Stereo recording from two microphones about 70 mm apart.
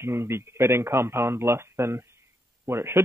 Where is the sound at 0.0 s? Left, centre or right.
Right.